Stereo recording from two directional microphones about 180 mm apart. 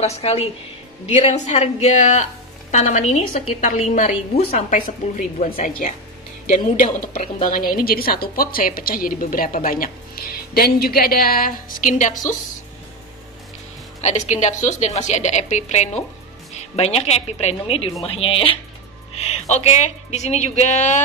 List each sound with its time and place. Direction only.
0.0 s a woman's voice: 35° left (ahead or behind)
7.5 s a woman's voice: 55° left (ahead or behind)
14.0 s a woman's voice: 40° left (ahead or behind)